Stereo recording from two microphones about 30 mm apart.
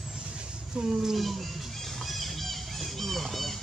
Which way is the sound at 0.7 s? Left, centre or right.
Right.